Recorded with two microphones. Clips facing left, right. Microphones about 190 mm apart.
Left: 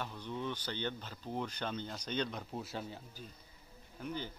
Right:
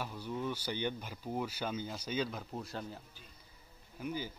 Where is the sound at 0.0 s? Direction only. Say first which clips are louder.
Right 2 dB; 10° right (ahead or behind).